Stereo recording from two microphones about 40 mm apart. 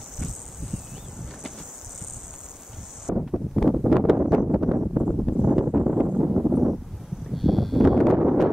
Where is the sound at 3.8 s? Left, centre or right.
Centre.